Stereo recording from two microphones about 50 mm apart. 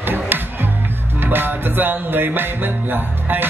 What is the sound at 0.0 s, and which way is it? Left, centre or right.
Music, right.